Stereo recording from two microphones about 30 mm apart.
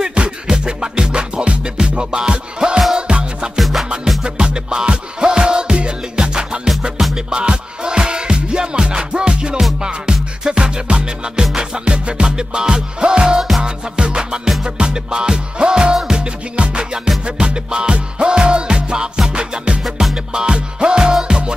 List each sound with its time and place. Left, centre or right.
0.1 s music: right
3.5 s music: centre
4.2 s music: right
16.5 s music: right
19.8 s music: centre
20.3 s music: right